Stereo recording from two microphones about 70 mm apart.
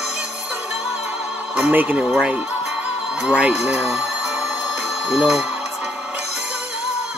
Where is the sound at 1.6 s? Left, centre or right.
Right.